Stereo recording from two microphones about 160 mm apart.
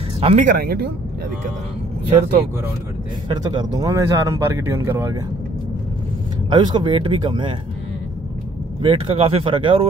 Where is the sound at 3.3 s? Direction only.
25° right (ahead or behind).